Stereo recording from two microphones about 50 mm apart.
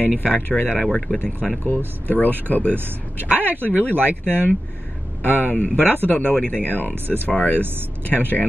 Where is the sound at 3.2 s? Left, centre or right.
Right.